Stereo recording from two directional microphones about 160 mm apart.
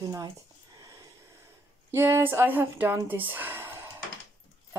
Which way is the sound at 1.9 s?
15° right (ahead or behind).